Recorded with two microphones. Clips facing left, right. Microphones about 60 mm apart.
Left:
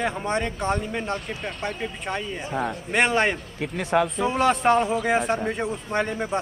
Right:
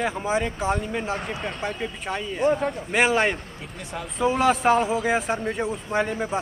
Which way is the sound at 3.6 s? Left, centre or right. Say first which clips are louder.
Left 12 dB; left.